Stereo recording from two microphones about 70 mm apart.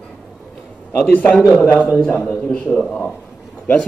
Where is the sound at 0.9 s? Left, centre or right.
Left.